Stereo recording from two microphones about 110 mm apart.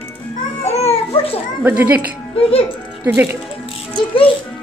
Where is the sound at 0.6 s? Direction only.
75° left (ahead or behind).